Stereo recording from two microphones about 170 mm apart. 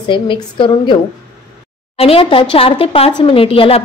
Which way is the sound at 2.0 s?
35° left (ahead or behind).